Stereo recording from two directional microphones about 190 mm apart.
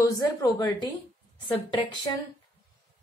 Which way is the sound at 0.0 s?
20° left (ahead or behind).